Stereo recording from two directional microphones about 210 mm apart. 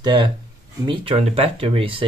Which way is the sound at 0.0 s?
20° right (ahead or behind).